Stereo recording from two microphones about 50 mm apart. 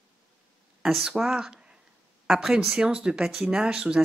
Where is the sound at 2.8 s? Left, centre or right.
Centre.